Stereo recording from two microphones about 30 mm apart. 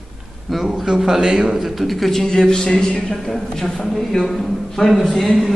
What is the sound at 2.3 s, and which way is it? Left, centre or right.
A man's voice, left.